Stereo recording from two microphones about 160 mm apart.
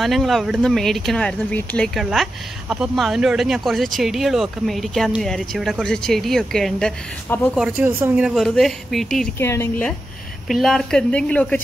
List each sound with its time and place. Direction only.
0.0 s speech: centre (ahead or behind)
2.7 s speech: 5° right (ahead or behind)
7.5 s speech: 5° right (ahead or behind)
9.4 s speech: 15° left (ahead or behind)
10.5 s speech: centre (ahead or behind)